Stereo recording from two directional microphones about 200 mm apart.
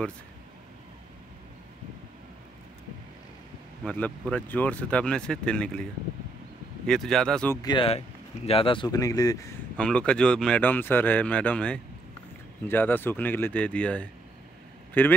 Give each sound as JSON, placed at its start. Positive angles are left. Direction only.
{"t": 3.8, "sound": "speech", "side_deg": 5}
{"t": 6.9, "sound": "speech", "side_deg": 0}
{"t": 7.6, "sound": "speech", "side_deg": 25}
{"t": 9.8, "sound": "speech", "side_deg": 5}